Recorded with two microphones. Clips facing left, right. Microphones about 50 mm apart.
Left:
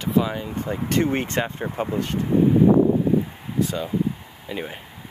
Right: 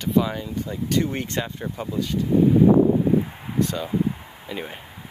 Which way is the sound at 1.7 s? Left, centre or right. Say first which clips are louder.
Left 2 dB; left.